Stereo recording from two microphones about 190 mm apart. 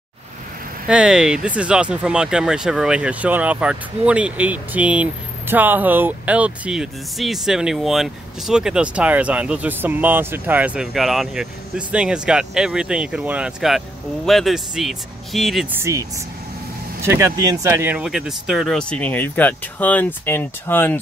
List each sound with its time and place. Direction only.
0.8 s speech: 5° right (ahead or behind)
15.7 s speech: 15° right (ahead or behind); by 21.0 s 10° left (ahead or behind)